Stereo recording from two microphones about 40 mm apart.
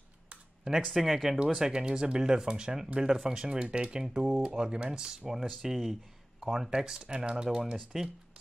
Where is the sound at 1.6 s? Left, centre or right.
Centre.